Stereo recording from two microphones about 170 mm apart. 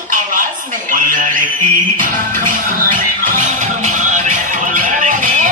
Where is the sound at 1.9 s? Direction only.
50° right (ahead or behind).